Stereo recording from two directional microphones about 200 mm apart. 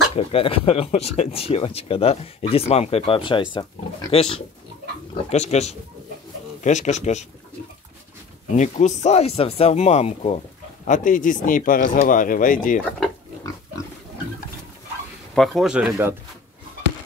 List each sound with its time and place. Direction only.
0.1 s speech: 30° left (ahead or behind)
8.5 s speech: 35° left (ahead or behind)
15.3 s speech: centre (ahead or behind)